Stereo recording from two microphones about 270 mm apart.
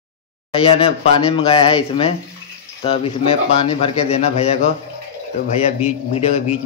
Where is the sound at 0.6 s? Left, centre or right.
Left.